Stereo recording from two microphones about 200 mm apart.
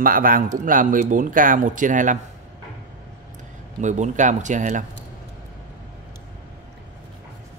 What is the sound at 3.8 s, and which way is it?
Speech, 35° right (ahead or behind).